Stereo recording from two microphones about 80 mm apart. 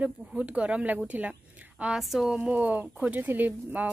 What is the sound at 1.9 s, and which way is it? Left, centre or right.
Speech, centre.